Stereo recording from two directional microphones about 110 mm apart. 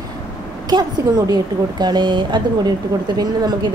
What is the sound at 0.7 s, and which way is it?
A woman's voice, 40° right (ahead or behind).